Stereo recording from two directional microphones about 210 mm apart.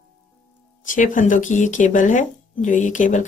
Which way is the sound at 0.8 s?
40° left (ahead or behind).